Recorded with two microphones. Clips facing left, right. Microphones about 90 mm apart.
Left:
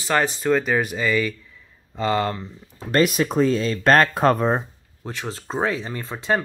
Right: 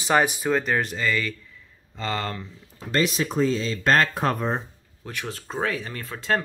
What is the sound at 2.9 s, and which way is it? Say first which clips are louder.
Speech: left 5 dB; 55° left (ahead or behind).